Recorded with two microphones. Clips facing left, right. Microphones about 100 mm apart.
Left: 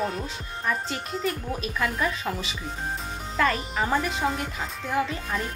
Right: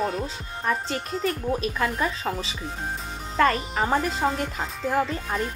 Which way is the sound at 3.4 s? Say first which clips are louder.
Right 3 dB; 35° right (ahead or behind).